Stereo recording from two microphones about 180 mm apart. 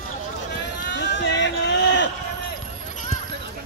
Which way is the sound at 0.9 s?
75° left (ahead or behind).